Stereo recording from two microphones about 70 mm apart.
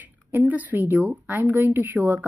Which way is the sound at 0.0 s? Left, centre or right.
Right.